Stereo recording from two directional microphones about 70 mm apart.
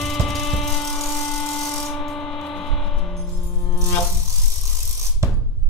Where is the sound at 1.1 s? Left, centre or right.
Centre.